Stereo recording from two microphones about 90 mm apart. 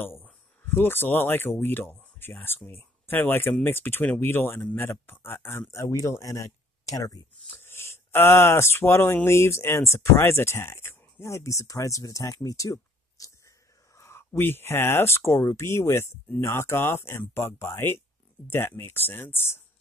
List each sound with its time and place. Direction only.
0.0 s speech: 20° left (ahead or behind)